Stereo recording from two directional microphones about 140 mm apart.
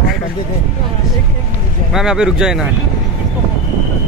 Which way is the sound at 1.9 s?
5° right (ahead or behind).